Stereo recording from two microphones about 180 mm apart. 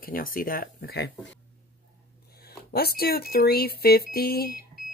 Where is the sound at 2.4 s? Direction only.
60° left (ahead or behind).